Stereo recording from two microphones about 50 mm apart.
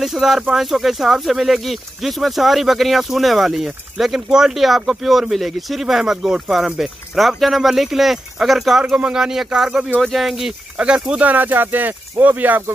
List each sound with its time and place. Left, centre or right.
0.0 s speech: centre
10.0 s speech: centre
11.1 s speech: right